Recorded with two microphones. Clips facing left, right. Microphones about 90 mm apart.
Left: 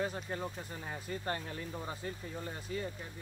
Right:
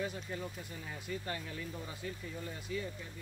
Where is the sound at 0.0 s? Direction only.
40° left (ahead or behind).